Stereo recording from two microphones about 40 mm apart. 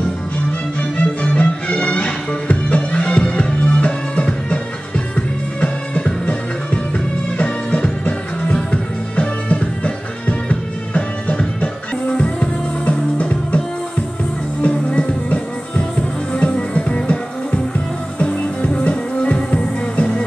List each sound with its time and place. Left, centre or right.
0.5 s music: left
7.3 s music: left
9.6 s music: left
14.6 s music: left